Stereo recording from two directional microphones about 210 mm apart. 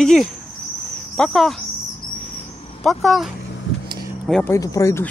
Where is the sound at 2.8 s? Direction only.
Centre (ahead or behind).